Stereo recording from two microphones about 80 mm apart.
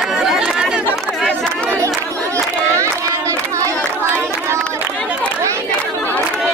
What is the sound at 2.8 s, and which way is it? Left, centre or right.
Crowd, right.